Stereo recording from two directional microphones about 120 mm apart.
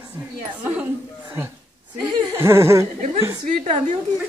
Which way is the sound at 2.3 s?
20° right (ahead or behind).